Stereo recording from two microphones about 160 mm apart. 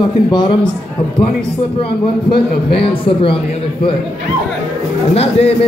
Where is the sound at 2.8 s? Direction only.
35° left (ahead or behind).